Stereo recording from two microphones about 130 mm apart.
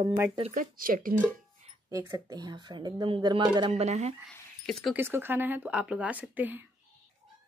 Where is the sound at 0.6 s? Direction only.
90° right.